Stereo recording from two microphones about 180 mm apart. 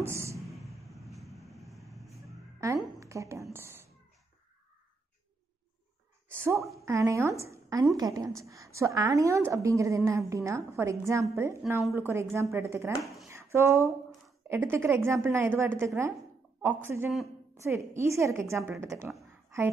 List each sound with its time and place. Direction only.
0.0 s a sound: 15° right (ahead or behind)
0.9 s vehicle: centre (ahead or behind)
2.2 s music: 15° right (ahead or behind)
3.0 s a sound: 15° right (ahead or behind)
3.5 s cat: 15° right (ahead or behind)
6.3 s a woman's voice: 15° right (ahead or behind)
13.0 s speech: centre (ahead or behind)
13.3 s a woman's voice: 15° right (ahead or behind)